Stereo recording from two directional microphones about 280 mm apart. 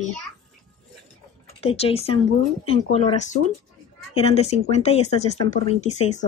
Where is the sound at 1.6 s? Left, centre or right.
Left.